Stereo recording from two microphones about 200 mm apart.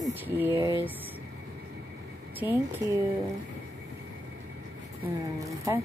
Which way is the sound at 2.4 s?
20° left (ahead or behind).